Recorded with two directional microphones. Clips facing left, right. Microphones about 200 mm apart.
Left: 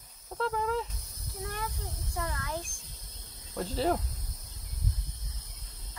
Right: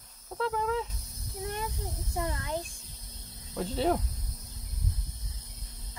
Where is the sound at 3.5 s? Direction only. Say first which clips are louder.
Right 1 dB; centre (ahead or behind).